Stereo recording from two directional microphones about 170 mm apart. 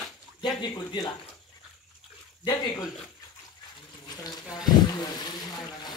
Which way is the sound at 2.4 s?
25° left (ahead or behind).